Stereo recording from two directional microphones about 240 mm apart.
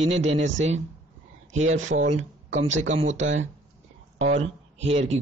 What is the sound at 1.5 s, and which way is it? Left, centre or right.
Speech, right.